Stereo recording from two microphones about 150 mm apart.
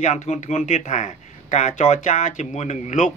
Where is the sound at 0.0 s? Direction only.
50° left (ahead or behind).